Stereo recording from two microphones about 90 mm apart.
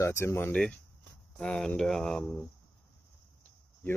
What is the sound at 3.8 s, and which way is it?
Speech, 20° left (ahead or behind).